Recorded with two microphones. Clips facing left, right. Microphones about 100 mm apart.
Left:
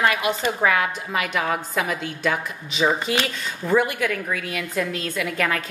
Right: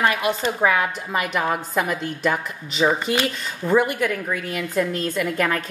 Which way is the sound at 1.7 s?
Centre (ahead or behind).